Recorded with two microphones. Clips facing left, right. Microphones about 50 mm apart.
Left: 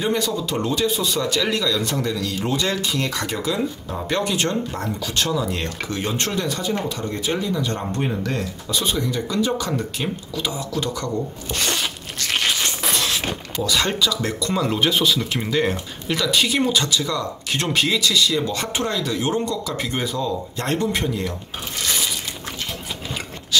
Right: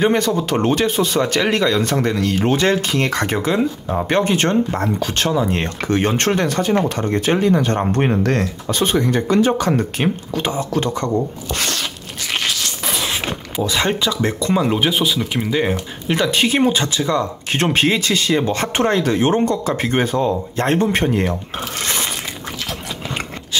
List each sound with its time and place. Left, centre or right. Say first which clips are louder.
0.0 s speech: right 6 dB; right
11.6 s a sound: left 1 dB; centre
12.2 s crunch: right 1 dB; centre
13.1 s speech: right 2 dB; right; by 15.5 s centre
16.1 s speech: right 4 dB; right
23.5 s rub: left 2 dB; right